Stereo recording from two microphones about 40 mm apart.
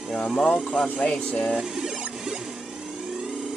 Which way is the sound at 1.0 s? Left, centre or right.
Left.